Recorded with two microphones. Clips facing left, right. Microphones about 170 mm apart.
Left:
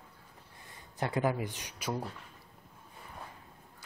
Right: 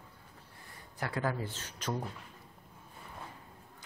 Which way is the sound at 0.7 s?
20° left (ahead or behind).